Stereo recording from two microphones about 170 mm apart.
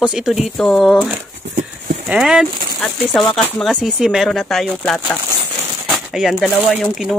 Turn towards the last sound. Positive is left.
turn(degrees=0)  # may be behind; listen again after turning